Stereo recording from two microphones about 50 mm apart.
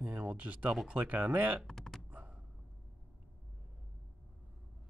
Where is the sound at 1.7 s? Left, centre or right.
Centre.